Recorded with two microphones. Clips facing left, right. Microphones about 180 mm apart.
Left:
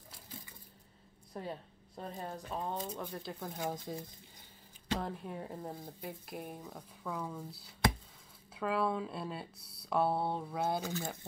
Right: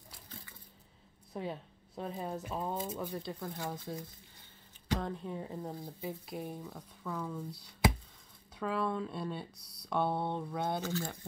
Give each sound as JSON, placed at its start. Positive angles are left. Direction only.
{"t": 1.3, "sound": "speech", "side_deg": 0}
{"t": 3.5, "sound": "speech", "side_deg": 15}
{"t": 5.0, "sound": "speech", "side_deg": 5}